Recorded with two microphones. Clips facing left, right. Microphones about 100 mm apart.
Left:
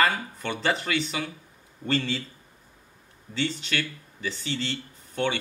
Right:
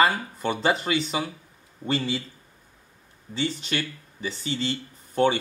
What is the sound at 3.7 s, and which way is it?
Speech, 35° right (ahead or behind).